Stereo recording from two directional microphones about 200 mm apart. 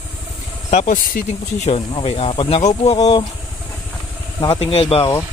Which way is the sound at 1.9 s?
25° left (ahead or behind).